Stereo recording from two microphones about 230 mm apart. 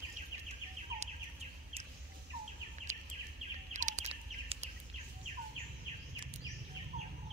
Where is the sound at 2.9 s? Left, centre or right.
Right.